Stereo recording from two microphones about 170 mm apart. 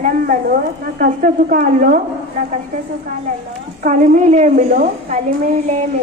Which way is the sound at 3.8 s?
50° right (ahead or behind).